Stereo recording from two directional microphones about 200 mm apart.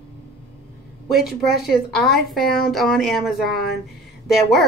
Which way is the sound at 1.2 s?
50° left (ahead or behind).